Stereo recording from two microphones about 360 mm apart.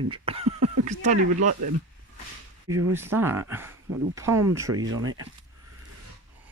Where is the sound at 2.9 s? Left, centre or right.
Centre.